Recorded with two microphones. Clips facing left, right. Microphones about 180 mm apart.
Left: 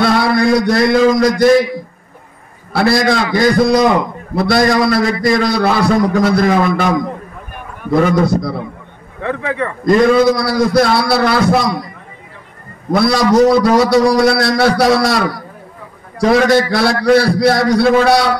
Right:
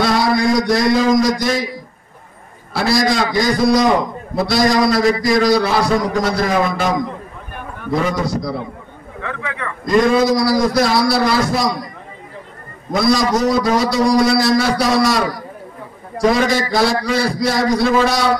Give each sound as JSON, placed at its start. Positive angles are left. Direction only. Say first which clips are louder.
{"t": 0.0, "sound": "a man's voice", "louder": "left 3 dB", "side_deg": 60}
{"t": 2.7, "sound": "a man's voice", "louder": "left 3 dB", "side_deg": 60}
{"t": 9.2, "sound": "speech", "louder": "left 8 dB", "side_deg": 35}
{"t": 9.8, "sound": "a man's voice", "louder": "left 3 dB", "side_deg": 60}
{"t": 12.9, "sound": "a man's voice", "louder": "left 4 dB", "side_deg": 65}
{"t": 16.3, "sound": "a man's voice", "louder": "left 5 dB", "side_deg": 65}